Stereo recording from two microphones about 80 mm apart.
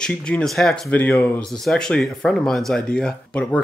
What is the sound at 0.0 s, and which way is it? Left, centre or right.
Speech, centre.